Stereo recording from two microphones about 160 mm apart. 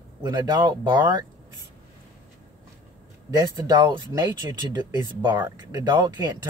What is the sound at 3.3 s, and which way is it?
Speech, 25° right (ahead or behind).